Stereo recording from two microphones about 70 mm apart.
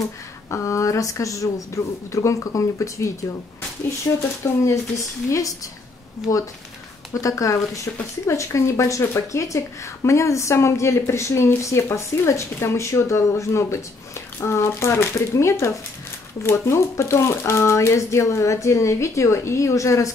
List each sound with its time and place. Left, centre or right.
0.5 s speech: left
4.2 s speech: left